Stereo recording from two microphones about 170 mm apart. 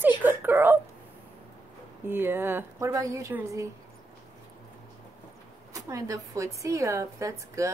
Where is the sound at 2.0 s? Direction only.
15° right (ahead or behind).